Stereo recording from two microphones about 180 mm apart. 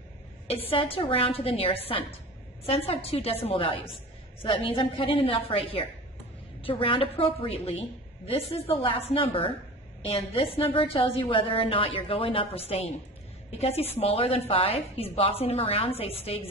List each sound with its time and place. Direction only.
0.5 s a woman's voice: 35° left (ahead or behind)